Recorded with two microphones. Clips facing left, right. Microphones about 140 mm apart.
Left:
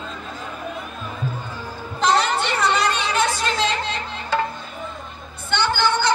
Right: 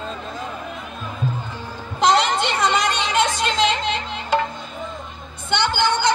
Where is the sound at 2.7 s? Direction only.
15° right (ahead or behind).